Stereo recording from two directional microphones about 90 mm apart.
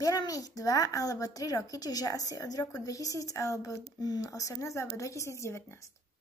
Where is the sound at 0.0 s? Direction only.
40° left (ahead or behind).